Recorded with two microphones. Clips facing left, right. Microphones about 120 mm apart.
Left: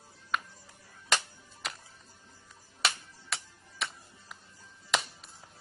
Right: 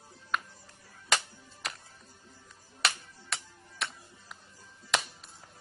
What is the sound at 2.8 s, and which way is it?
Music, centre (ahead or behind).